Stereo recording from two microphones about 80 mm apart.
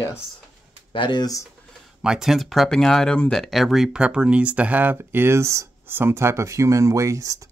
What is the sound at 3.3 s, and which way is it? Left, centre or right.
Speech, centre.